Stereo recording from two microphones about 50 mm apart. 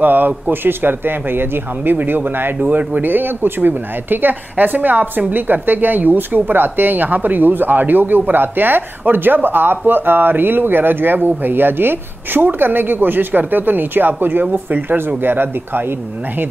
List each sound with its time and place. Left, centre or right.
0.0 s speech: right